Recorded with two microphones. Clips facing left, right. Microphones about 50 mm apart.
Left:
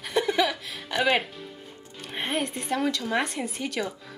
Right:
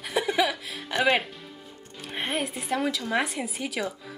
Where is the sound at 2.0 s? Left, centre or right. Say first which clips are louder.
Left 1 dB; centre.